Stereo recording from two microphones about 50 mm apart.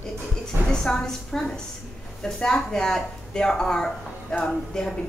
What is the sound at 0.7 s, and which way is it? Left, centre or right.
Speech, centre.